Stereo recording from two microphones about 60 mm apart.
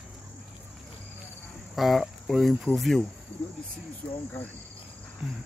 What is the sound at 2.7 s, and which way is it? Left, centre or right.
Cricket, centre.